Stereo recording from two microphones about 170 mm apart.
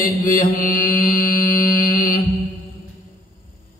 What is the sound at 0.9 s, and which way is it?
Mantra, 55° left (ahead or behind).